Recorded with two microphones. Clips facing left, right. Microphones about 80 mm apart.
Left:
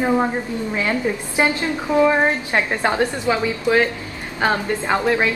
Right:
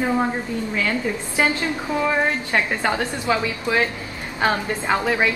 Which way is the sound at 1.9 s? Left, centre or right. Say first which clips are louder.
Left 6 dB; centre.